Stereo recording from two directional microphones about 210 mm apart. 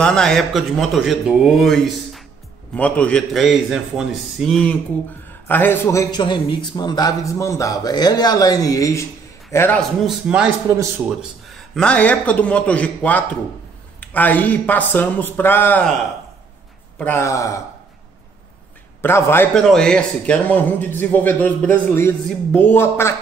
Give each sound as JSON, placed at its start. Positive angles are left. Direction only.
{"t": 0.0, "sound": "a man's voice", "side_deg": 5}
{"t": 9.8, "sound": "a man's voice", "side_deg": -5}
{"t": 17.0, "sound": "a man's voice", "side_deg": 10}
{"t": 18.9, "sound": "a man's voice", "side_deg": 10}